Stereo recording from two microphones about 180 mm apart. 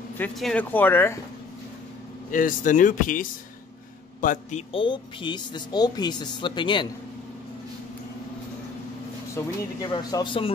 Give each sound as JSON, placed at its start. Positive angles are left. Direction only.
{"t": 0.2, "sound": "speech", "side_deg": 5}
{"t": 2.3, "sound": "speech", "side_deg": 45}
{"t": 4.7, "sound": "speech", "side_deg": 25}
{"t": 9.3, "sound": "speech", "side_deg": 20}